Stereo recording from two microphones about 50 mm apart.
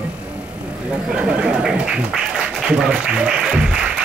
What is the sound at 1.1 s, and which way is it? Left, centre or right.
Speech, right.